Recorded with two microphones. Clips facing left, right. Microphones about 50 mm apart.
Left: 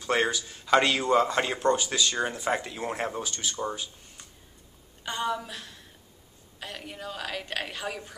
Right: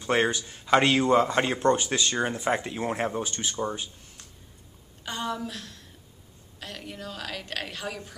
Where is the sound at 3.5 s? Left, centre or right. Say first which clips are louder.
Right 1 dB; centre.